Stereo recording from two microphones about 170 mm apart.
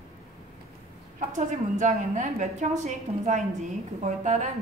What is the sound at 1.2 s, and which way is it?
A woman's voice, 45° right (ahead or behind).